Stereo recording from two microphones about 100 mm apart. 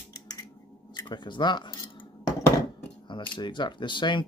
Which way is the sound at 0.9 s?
50° left (ahead or behind).